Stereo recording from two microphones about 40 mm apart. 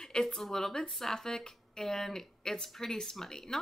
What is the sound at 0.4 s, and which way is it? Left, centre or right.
Speech, centre.